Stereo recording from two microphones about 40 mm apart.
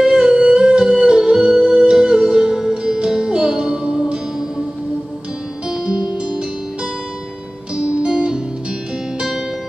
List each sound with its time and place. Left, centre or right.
0.2 s music: right
5.7 s music: centre
7.7 s music: right